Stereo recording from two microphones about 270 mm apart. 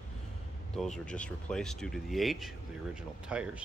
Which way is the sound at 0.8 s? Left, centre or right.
Centre.